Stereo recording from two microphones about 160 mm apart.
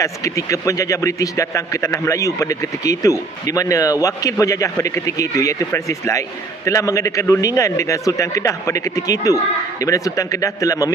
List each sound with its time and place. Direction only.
0.0 s a man's voice: 20° left (ahead or behind)